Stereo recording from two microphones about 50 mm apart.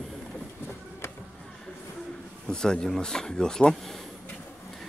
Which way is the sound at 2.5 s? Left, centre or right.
Centre.